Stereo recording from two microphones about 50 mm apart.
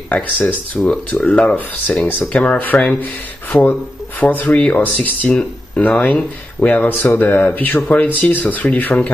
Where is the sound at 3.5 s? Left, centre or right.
Centre.